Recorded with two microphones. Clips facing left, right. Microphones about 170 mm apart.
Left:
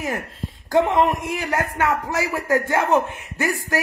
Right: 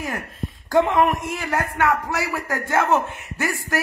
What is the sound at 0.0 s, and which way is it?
A man's voice, 20° left (ahead or behind).